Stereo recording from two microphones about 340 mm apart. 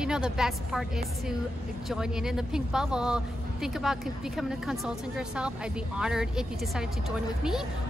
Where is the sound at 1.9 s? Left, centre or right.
Centre.